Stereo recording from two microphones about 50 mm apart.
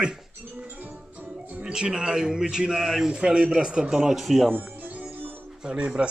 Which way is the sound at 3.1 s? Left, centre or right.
Right.